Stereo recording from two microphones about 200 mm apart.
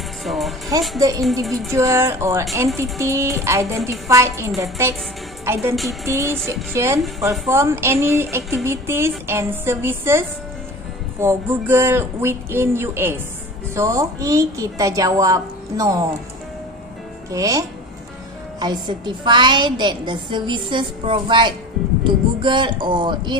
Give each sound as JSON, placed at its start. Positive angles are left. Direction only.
{"t": 0.2, "sound": "speech", "side_deg": 0}
{"t": 0.9, "sound": "a woman's voice", "side_deg": -15}
{"t": 7.0, "sound": "a woman's voice", "side_deg": 0}
{"t": 7.4, "sound": "a woman's voice", "side_deg": -15}
{"t": 17.3, "sound": "a woman's voice", "side_deg": -15}